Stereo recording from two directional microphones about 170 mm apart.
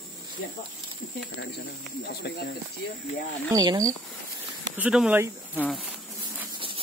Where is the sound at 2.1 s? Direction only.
75° left (ahead or behind).